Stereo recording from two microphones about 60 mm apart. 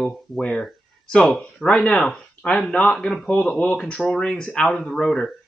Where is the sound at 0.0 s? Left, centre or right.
Centre.